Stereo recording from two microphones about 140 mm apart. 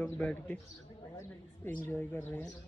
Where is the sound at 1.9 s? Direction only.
15° left (ahead or behind).